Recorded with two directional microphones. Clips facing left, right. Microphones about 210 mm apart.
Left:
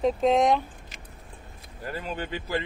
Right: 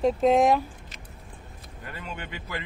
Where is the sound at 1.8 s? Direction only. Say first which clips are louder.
Left 6 dB; 35° left (ahead or behind).